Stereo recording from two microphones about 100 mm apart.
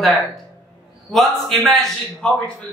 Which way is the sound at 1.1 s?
Centre (ahead or behind).